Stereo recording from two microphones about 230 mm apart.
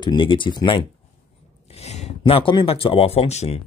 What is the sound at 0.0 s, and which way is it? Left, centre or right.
Speech, left.